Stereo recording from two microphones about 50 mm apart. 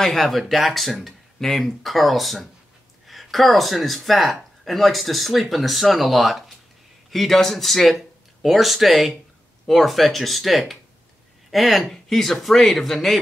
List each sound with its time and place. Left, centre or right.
0.0 s speech: centre